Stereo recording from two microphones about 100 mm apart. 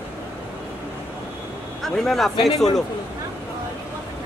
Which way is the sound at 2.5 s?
40° left (ahead or behind).